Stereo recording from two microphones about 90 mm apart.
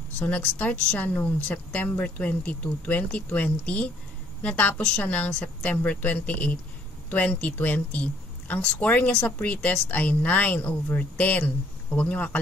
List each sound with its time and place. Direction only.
0.2 s speech: 15° left (ahead or behind)